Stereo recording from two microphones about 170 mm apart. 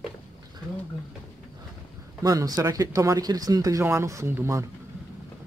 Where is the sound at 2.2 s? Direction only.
20° right (ahead or behind).